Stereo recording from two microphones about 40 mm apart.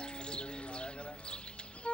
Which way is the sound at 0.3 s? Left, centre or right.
Left.